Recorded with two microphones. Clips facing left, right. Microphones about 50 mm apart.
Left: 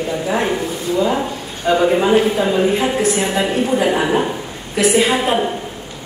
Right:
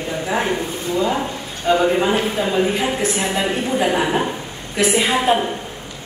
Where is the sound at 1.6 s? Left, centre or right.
Centre.